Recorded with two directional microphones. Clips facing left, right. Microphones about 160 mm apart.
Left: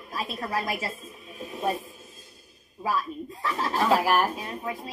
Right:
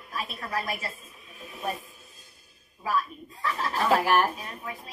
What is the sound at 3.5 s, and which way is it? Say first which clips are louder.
Speech: left 4 dB; 35° left (ahead or behind).